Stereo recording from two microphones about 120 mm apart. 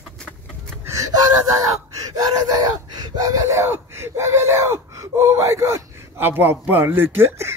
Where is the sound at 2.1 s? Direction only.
35° right (ahead or behind).